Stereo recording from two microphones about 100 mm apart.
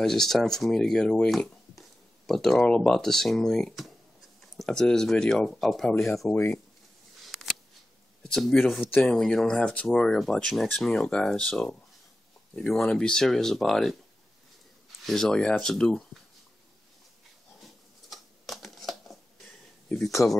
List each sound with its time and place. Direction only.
0.0 s speech: 5° left (ahead or behind)
7.2 s scissors: centre (ahead or behind)
8.2 s speech: 5° left (ahead or behind)
9.8 s speech: centre (ahead or behind)
15.0 s speech: 5° left (ahead or behind)
18.1 s typewriter: centre (ahead or behind)
20.2 s speech: 30° left (ahead or behind)